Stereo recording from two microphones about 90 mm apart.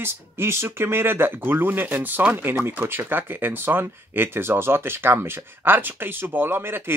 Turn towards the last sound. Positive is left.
turn(degrees=-25)  # may be behind; listen again after turning